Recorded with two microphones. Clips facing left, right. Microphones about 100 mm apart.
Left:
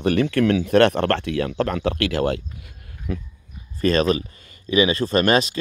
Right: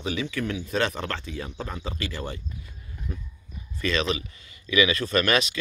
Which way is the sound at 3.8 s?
45° left (ahead or behind).